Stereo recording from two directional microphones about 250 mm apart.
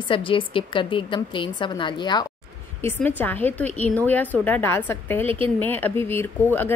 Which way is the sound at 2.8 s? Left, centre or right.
Centre.